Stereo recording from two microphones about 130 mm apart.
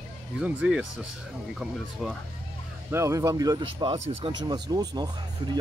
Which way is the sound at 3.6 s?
40° right (ahead or behind).